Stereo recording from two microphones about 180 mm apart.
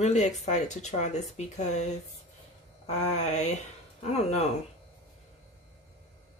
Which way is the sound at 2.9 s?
40° left (ahead or behind).